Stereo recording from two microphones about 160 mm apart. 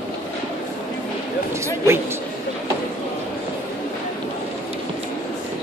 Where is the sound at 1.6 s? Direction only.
15° right (ahead or behind).